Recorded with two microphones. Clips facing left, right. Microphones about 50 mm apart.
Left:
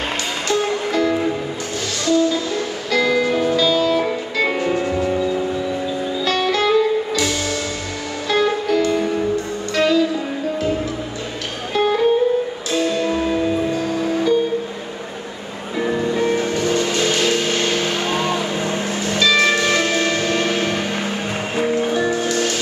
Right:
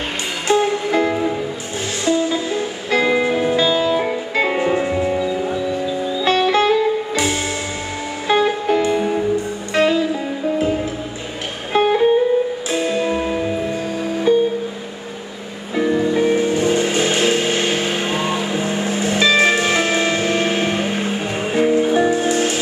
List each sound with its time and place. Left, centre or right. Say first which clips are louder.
0.5 s music: right 4 dB; right
11.7 s music: right 2 dB; right
16.0 s music: right 2 dB; centre